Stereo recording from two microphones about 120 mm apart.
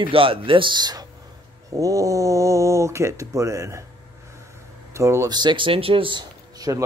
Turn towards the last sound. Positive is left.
turn(degrees=-35)  # may be behind; listen again after turning